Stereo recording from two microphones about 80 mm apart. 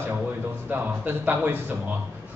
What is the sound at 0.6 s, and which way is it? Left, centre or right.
Speech, right.